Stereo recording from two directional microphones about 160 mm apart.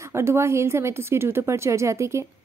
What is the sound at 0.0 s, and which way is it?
A woman's voice, 15° right (ahead or behind).